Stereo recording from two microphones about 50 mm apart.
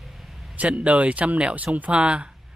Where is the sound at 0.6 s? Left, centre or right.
Right.